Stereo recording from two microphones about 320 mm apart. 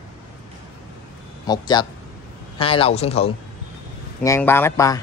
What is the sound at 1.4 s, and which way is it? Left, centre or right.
Speech, centre.